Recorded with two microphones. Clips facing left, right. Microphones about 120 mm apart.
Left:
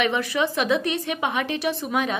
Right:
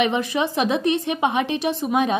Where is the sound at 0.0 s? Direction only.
20° right (ahead or behind).